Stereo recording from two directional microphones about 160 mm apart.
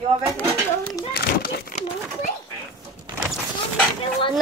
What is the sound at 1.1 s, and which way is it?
Children playing, 70° left (ahead or behind).